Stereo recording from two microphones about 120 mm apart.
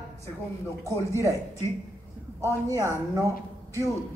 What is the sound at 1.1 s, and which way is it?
Speech, 25° right (ahead or behind).